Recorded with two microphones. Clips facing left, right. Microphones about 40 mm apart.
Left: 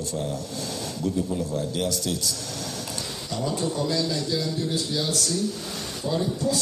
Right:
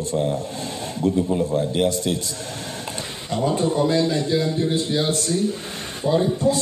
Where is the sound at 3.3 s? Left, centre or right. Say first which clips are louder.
Right 7 dB; right.